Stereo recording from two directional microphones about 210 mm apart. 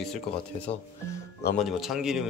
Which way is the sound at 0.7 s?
30° left (ahead or behind).